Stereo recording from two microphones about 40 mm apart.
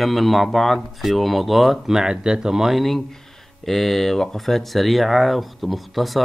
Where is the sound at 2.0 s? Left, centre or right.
Centre.